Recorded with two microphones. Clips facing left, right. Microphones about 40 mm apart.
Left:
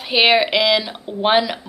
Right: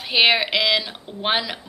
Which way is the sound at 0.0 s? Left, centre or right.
Centre.